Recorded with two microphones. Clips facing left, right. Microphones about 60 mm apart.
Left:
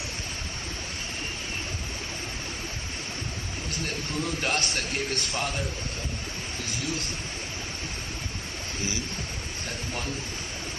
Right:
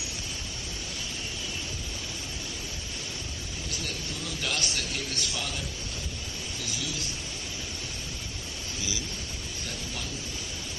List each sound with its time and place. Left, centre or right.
3.8 s a man's voice: left
6.8 s a man's voice: left